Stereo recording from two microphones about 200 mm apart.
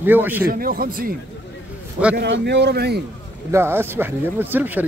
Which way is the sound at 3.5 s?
10° right (ahead or behind).